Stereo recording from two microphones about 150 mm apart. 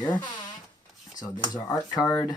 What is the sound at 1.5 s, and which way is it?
Speech, 20° left (ahead or behind).